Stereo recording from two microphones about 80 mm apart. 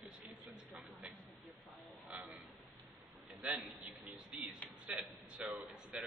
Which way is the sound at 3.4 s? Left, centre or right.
Centre.